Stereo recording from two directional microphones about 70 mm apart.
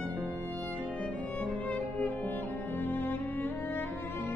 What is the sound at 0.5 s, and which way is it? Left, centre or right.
Music, left.